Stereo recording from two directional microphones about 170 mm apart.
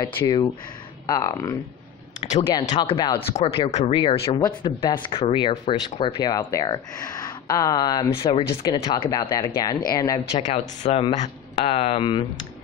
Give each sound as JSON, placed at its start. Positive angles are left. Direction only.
{"t": 0.0, "sound": "speech", "side_deg": 25}
{"t": 2.8, "sound": "speech", "side_deg": 30}
{"t": 4.4, "sound": "speech", "side_deg": 25}
{"t": 10.5, "sound": "speech", "side_deg": 40}